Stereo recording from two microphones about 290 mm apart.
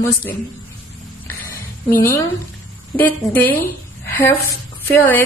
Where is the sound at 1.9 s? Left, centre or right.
Left.